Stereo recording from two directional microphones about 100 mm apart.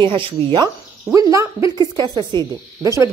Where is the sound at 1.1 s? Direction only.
35° right (ahead or behind).